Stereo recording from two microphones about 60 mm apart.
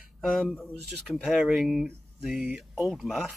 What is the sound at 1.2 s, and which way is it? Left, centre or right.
Speech, centre.